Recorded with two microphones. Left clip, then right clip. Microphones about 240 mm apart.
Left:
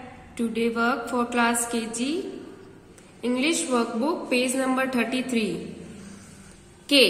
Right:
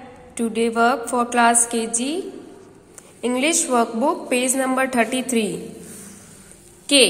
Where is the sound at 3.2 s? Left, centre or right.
Centre.